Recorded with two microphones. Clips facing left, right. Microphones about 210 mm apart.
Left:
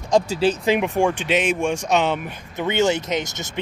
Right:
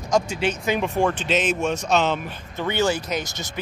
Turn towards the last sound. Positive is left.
turn(degrees=20)  # may be behind; listen again after turning